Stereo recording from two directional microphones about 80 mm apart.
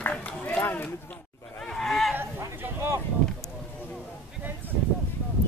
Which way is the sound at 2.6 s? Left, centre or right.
Right.